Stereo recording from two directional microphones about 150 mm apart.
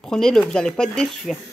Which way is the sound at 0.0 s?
5° left (ahead or behind).